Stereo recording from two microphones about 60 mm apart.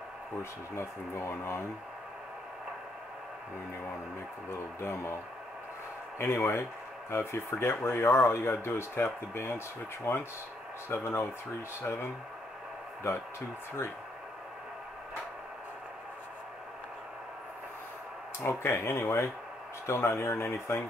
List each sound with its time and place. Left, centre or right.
0.4 s speech: left
4.5 s speech: left
6.1 s speech: left
13.0 s speech: left
18.4 s speech: left